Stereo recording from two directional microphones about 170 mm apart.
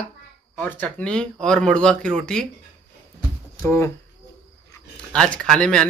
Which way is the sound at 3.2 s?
15° left (ahead or behind).